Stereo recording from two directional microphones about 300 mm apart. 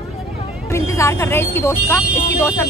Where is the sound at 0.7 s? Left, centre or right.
Centre.